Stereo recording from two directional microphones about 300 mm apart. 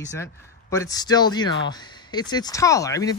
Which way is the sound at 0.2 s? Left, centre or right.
Centre.